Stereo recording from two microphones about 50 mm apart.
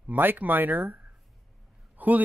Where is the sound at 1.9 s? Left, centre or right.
Right.